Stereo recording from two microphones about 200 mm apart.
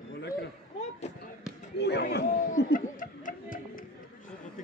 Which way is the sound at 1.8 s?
55° left (ahead or behind).